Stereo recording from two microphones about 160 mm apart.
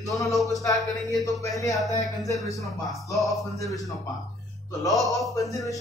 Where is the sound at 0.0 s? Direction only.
20° left (ahead or behind).